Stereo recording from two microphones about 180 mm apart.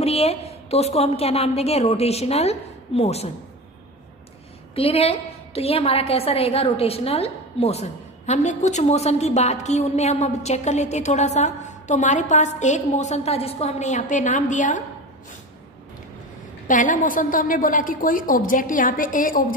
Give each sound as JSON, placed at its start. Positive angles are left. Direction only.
{"t": 0.0, "sound": "a woman's voice", "side_deg": 35}
{"t": 4.7, "sound": "a woman's voice", "side_deg": 30}
{"t": 16.6, "sound": "a woman's voice", "side_deg": 45}